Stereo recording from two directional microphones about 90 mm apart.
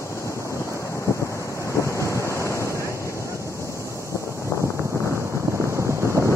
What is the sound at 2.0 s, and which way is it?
Wind noise, 35° left (ahead or behind).